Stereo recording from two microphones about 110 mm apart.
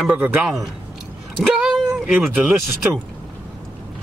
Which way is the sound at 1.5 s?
10° right (ahead or behind).